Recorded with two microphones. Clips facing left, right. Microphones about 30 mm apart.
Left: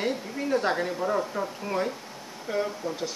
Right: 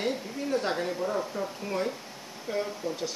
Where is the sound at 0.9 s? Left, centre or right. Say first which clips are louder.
Left 3 dB; left.